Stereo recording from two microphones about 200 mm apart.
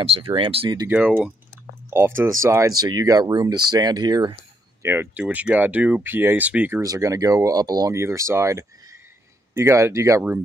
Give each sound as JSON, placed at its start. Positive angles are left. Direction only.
{"t": 0.0, "sound": "speech", "side_deg": -25}
{"t": 0.8, "sound": "speech", "side_deg": -10}
{"t": 4.8, "sound": "speech", "side_deg": -10}